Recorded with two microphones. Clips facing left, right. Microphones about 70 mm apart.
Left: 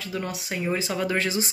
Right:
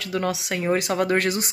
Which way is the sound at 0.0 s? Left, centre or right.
Right.